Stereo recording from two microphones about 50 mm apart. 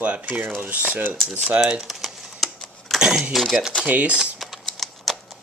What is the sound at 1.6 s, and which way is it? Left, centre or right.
Speech, centre.